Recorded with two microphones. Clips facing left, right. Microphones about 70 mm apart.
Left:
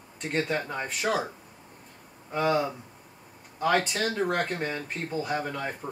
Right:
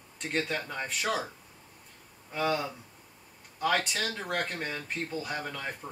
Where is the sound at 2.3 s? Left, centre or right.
Centre.